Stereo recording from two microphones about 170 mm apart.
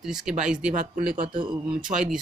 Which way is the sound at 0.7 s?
50° right (ahead or behind).